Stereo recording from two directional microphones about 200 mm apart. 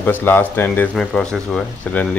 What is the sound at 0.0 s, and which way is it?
Speech, 10° left (ahead or behind).